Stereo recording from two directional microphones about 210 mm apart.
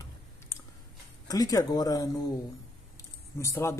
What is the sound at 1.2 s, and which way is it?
Speech, 15° left (ahead or behind).